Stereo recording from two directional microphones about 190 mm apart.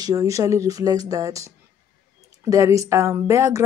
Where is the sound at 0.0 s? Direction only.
15° right (ahead or behind).